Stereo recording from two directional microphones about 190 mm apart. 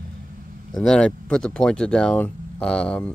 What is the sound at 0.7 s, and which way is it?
Speech, 5° left (ahead or behind).